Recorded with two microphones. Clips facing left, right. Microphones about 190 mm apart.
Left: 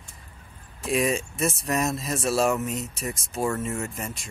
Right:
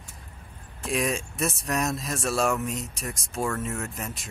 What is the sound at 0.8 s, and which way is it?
Speech, centre (ahead or behind).